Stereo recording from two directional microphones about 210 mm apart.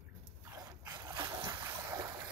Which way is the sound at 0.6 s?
20° right (ahead or behind).